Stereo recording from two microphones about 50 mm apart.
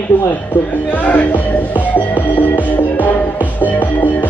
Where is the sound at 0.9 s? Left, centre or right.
Left.